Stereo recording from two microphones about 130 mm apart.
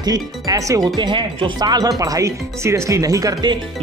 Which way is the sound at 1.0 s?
35° right (ahead or behind).